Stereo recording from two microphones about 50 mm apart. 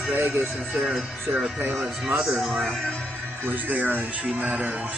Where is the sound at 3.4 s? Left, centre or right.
Right.